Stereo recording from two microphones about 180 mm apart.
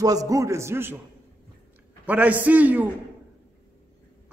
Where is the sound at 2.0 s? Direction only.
10° right (ahead or behind).